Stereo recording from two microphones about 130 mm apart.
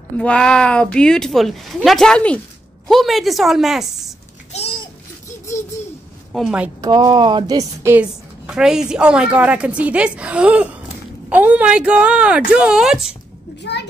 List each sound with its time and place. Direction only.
0.2 s speech: 5° left (ahead or behind)
6.3 s speech: 5° right (ahead or behind)
6.8 s speech: 30° right (ahead or behind)
7.9 s a woman's voice: 10° right (ahead or behind)